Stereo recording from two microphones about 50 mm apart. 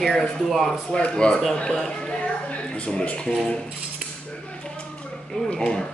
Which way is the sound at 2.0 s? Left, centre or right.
Left.